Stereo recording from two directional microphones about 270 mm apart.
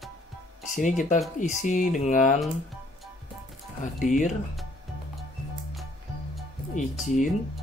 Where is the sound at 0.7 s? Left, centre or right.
Left.